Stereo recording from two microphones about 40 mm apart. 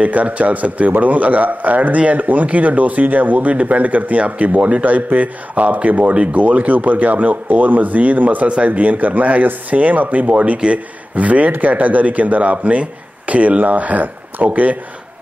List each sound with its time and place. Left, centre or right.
0.0 s a man's voice: right